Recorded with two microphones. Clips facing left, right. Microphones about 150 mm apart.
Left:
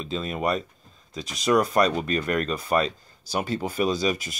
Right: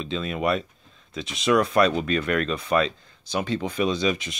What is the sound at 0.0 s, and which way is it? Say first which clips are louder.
Speech: right 1 dB; 45° left (ahead or behind).